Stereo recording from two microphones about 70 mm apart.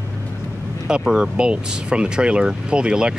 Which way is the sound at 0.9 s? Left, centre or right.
Centre.